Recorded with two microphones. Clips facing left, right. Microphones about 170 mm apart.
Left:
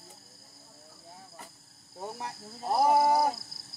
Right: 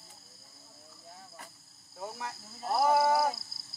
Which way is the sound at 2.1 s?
30° left (ahead or behind).